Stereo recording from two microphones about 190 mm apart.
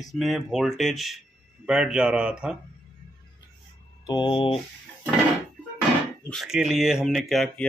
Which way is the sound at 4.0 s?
25° left (ahead or behind).